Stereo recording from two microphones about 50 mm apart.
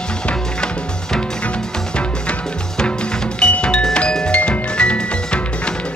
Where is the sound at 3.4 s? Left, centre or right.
Left.